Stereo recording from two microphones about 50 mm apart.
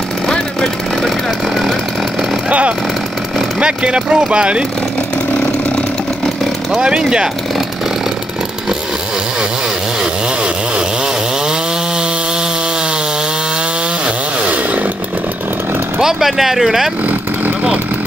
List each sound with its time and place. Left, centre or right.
0.3 s a sound: centre
3.5 s speech: right
6.8 s speech: centre
14.5 s chainsaw: right
16.0 s speech: centre